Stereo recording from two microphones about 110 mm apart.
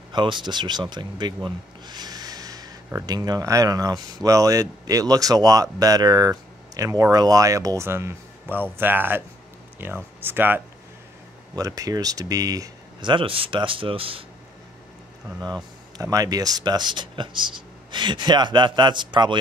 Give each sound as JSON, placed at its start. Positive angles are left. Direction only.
{"t": 0.1, "sound": "speech", "side_deg": -45}
{"t": 11.5, "sound": "speech", "side_deg": -30}
{"t": 13.0, "sound": "speech", "side_deg": -50}
{"t": 15.4, "sound": "speech", "side_deg": -35}